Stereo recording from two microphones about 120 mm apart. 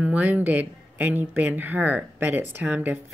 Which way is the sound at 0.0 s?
15° right (ahead or behind).